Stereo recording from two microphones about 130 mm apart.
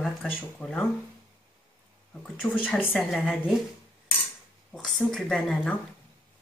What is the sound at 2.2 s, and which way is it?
Speech, 10° left (ahead or behind).